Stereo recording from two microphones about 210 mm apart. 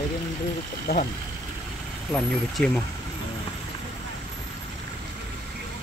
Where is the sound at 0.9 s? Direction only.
45° left (ahead or behind).